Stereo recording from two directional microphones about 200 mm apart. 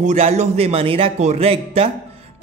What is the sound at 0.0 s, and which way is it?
A man's voice, 35° right (ahead or behind).